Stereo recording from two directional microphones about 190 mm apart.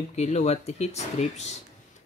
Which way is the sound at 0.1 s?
35° left (ahead or behind).